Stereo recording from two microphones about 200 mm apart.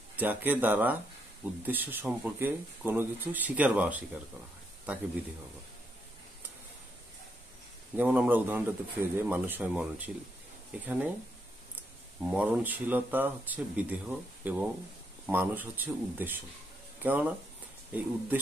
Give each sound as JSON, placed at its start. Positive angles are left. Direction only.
{"t": 0.1, "sound": "speech", "side_deg": -10}
{"t": 7.9, "sound": "speech", "side_deg": -10}
{"t": 12.2, "sound": "speech", "side_deg": -5}